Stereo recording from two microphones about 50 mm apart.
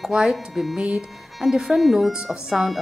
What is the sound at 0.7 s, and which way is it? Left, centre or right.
Speech, centre.